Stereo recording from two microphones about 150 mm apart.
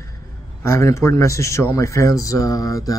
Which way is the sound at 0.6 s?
20° left (ahead or behind).